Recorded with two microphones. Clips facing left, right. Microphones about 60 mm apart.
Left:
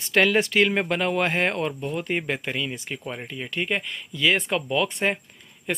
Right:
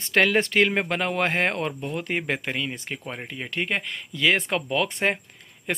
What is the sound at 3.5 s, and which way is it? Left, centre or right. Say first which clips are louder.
A man's voice: even; right.